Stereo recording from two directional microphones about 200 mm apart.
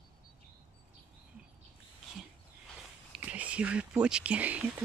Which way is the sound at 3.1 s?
5° right (ahead or behind).